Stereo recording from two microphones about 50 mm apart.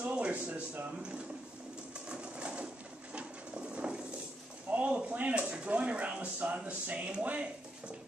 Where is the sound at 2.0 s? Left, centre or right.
Right.